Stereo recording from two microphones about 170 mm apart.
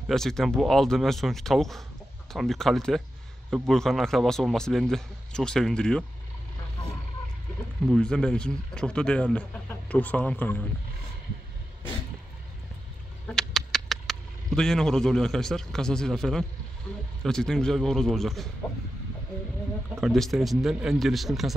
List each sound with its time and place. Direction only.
0.1 s a man's voice: centre (ahead or behind)
7.8 s a man's voice: 5° left (ahead or behind)
13.3 s a man's voice: 5° left (ahead or behind)
20.0 s a man's voice: centre (ahead or behind)